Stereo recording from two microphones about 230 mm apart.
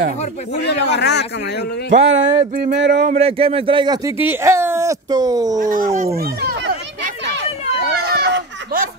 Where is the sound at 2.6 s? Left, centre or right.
Right.